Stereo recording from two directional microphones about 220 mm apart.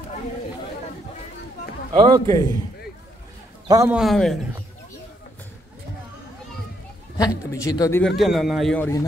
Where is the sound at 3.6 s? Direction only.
15° right (ahead or behind).